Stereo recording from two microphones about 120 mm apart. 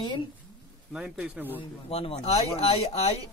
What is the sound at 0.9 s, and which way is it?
Speech, 10° right (ahead or behind).